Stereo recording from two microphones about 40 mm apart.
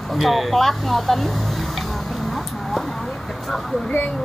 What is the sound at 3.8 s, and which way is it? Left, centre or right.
Speech, left.